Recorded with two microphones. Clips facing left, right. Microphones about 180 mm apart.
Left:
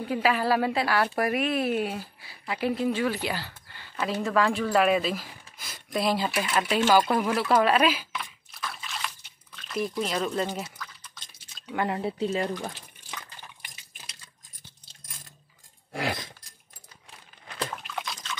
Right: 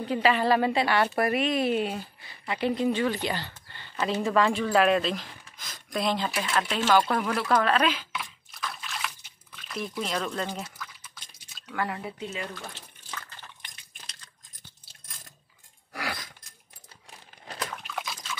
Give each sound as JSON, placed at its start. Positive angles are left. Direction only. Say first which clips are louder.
{"t": 0.0, "sound": "speech", "louder": "right 1 dB", "side_deg": 5}
{"t": 8.2, "sound": "a sound", "louder": "even", "side_deg": 0}
{"t": 11.7, "sound": "speech", "louder": "left 4 dB", "side_deg": 25}
{"t": 13.1, "sound": "liquid", "louder": "even", "side_deg": 10}
{"t": 15.9, "sound": "speech", "louder": "left 5 dB", "side_deg": 25}
{"t": 17.8, "sound": "liquid", "louder": "even", "side_deg": -5}